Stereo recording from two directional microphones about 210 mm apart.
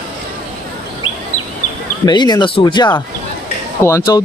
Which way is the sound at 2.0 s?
20° left (ahead or behind).